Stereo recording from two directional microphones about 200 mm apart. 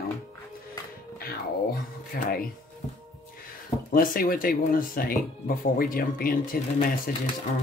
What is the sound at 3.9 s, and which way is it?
Speech, 45° left (ahead or behind).